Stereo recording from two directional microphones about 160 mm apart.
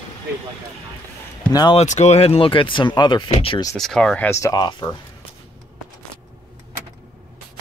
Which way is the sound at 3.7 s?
5° left (ahead or behind).